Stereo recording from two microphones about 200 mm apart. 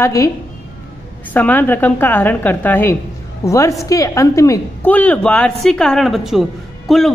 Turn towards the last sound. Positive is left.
turn(degrees=0)  # may be behind; listen again after turning